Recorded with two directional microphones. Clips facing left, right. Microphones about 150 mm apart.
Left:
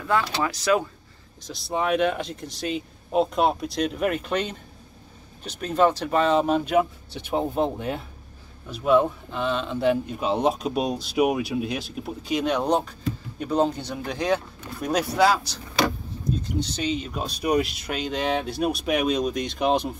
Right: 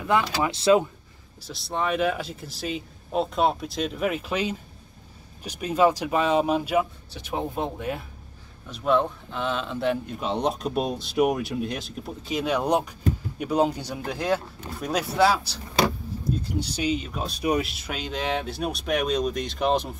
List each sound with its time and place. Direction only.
0.0 s speech: 15° right (ahead or behind)
1.5 s speech: centre (ahead or behind)
7.2 s speech: 25° left (ahead or behind)
8.6 s speech: 5° left (ahead or behind)